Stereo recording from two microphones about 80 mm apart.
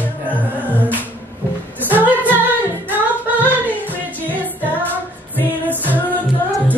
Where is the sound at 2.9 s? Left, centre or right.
Right.